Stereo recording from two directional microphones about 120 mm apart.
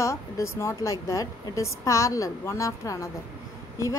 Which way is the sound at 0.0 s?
25° left (ahead or behind).